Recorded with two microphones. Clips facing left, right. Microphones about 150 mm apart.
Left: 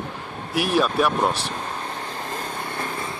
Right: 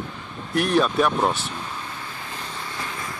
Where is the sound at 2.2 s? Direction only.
50° left (ahead or behind).